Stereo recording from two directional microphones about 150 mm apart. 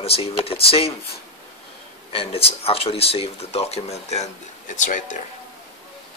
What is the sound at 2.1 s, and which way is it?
Speech, 40° left (ahead or behind).